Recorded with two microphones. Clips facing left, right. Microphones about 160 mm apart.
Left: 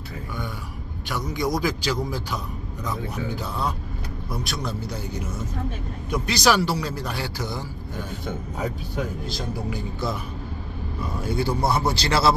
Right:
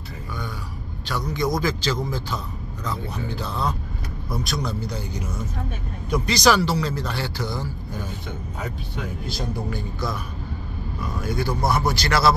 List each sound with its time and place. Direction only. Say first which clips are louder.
1.0 s a man's voice: right 1 dB; 15° left (ahead or behind)
4.3 s a man's voice: right 3 dB; centre (ahead or behind)
11.1 s speech: left 1 dB; 30° left (ahead or behind)